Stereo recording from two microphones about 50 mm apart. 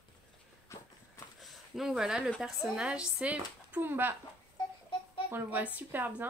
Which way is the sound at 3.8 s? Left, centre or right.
Right.